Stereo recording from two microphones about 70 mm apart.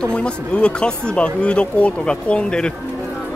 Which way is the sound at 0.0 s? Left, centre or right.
Centre.